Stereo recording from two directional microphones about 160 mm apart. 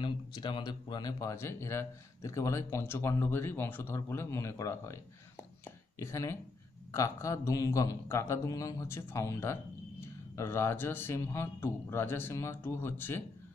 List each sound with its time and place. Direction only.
0.0 s a man's voice: 30° left (ahead or behind)